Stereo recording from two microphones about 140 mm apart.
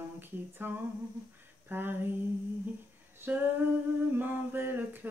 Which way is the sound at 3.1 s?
15° right (ahead or behind).